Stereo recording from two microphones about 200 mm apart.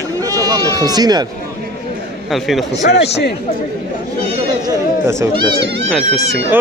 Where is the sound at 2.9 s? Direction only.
55° left (ahead or behind).